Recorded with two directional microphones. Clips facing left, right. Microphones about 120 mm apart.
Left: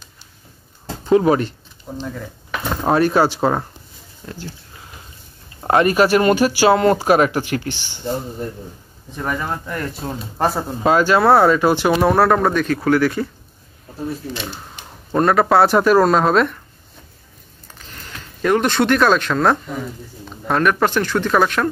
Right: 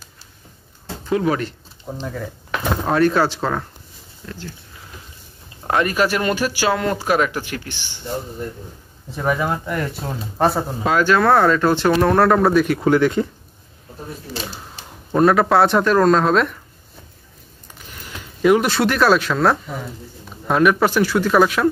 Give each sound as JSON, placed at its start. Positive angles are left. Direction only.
{"t": 1.0, "sound": "speech", "side_deg": 25}
{"t": 2.1, "sound": "a sound", "side_deg": 0}
{"t": 2.9, "sound": "speech", "side_deg": 15}
{"t": 5.6, "sound": "speech", "side_deg": 35}
{"t": 9.1, "sound": "speech", "side_deg": -5}
{"t": 11.1, "sound": "speech", "side_deg": 10}
{"t": 12.6, "sound": "speech", "side_deg": -15}
{"t": 15.1, "sound": "speech", "side_deg": 0}
{"t": 17.7, "sound": "speech", "side_deg": -10}